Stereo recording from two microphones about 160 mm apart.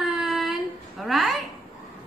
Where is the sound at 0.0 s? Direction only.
Centre (ahead or behind).